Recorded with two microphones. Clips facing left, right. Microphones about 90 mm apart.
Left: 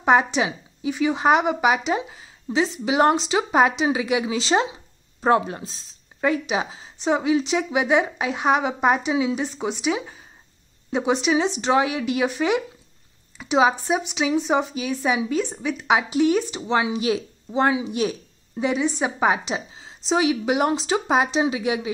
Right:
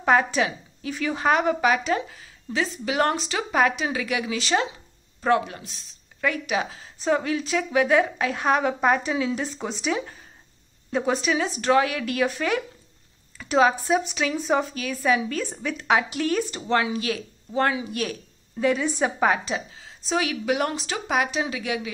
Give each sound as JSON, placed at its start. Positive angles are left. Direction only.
{"t": 0.0, "sound": "a woman's voice", "side_deg": 20}